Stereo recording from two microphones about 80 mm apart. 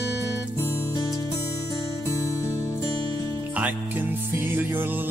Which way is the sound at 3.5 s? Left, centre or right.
Right.